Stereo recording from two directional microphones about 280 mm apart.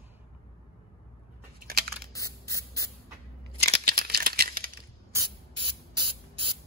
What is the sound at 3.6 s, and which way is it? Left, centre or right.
Rattle, right.